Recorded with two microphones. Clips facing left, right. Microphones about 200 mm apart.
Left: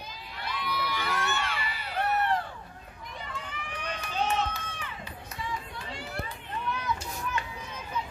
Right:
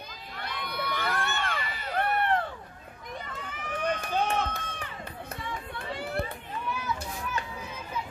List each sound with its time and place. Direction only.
0.4 s crowd: 55° right (ahead or behind)
3.3 s run: 45° right (ahead or behind)
5.4 s chatter: 55° right (ahead or behind)